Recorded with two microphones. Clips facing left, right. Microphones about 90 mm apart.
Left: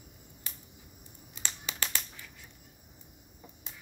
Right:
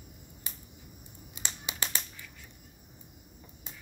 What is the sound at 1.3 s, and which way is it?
Finger snapping, 15° right (ahead or behind).